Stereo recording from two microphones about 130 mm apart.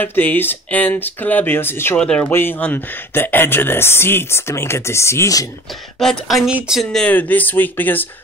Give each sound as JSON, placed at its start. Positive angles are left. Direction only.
{"t": 0.0, "sound": "speech", "side_deg": 15}
{"t": 5.9, "sound": "a woman's voice", "side_deg": 0}